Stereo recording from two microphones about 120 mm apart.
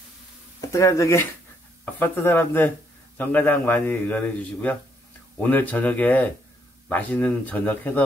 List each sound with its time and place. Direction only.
0.6 s a man's voice: 25° left (ahead or behind)